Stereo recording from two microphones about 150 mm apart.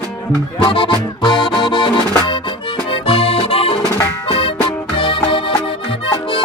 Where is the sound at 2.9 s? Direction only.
40° left (ahead or behind).